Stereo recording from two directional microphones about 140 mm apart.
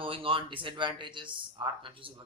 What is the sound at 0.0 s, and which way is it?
A man's voice, 40° right (ahead or behind).